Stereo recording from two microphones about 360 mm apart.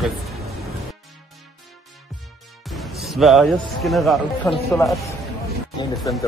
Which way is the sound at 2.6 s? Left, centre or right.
Centre.